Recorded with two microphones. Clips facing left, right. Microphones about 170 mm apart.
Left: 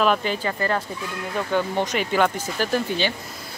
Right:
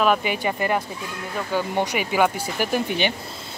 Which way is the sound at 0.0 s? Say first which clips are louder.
Right 1 dB; 10° right (ahead or behind).